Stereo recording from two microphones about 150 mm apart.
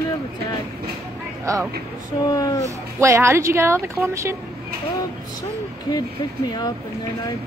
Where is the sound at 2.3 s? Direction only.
25° left (ahead or behind).